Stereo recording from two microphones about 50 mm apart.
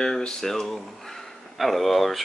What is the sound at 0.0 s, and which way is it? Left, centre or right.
Speech, centre.